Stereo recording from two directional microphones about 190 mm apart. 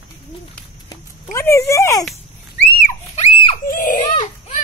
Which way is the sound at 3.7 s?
45° left (ahead or behind).